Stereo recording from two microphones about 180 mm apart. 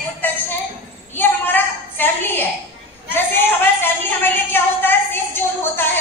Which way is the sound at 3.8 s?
10° left (ahead or behind).